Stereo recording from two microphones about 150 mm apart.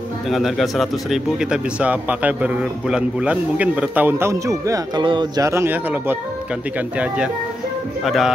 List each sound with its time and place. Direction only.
0.3 s speech: centre (ahead or behind)
8.0 s speech: centre (ahead or behind)